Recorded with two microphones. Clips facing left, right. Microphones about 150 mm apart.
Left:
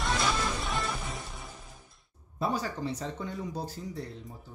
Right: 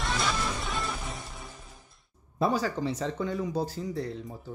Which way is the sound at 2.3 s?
90° right.